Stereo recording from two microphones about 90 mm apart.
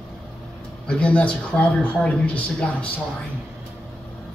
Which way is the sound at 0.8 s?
10° left (ahead or behind).